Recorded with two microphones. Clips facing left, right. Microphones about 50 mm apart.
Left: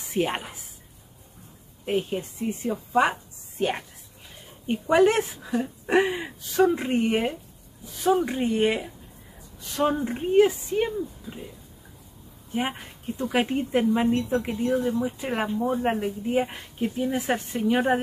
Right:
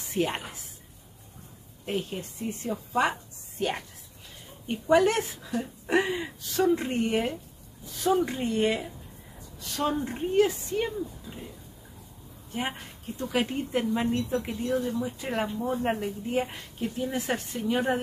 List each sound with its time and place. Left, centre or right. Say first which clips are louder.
0.1 s speech: left 2 dB; centre
1.9 s a woman's voice: left 5 dB; left
9.9 s a woman's voice: left 4 dB; centre
12.5 s speech: left 4 dB; centre